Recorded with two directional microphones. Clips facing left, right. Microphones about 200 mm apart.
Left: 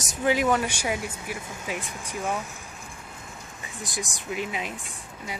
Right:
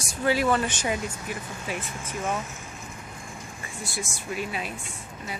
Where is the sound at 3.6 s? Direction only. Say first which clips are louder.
Left 1 dB; 15° left (ahead or behind).